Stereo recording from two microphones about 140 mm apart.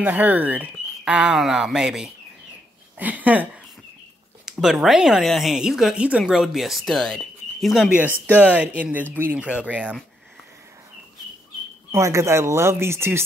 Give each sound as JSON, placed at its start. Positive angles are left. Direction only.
{"t": 0.0, "sound": "speech", "side_deg": -10}
{"t": 4.5, "sound": "speech", "side_deg": -5}
{"t": 8.0, "sound": "speech", "side_deg": -10}
{"t": 11.9, "sound": "speech", "side_deg": -20}